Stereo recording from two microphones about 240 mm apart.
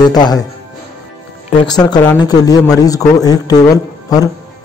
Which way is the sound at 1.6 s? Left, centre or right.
Centre.